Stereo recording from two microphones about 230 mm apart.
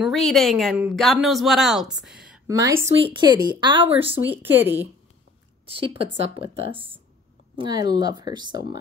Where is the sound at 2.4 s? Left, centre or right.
Centre.